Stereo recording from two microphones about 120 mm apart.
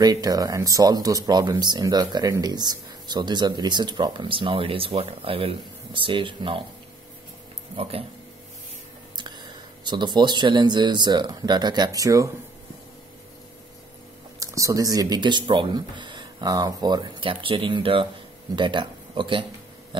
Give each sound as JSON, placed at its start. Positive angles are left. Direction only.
{"t": 0.0, "sound": "speech", "side_deg": -35}
{"t": 7.7, "sound": "speech", "side_deg": -55}
{"t": 9.8, "sound": "speech", "side_deg": -40}
{"t": 14.4, "sound": "speech", "side_deg": -25}